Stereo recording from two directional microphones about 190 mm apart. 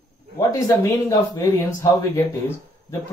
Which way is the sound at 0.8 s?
15° left (ahead or behind).